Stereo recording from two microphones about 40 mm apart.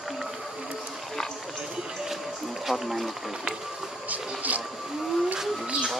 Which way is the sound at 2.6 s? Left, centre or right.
Centre.